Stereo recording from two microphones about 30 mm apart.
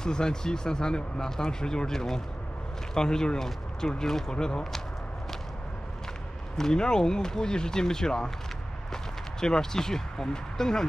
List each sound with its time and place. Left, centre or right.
0.0 s speech: left
6.6 s speech: left